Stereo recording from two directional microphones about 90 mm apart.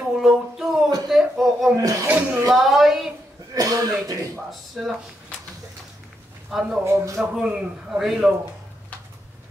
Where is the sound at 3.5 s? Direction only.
40° right (ahead or behind).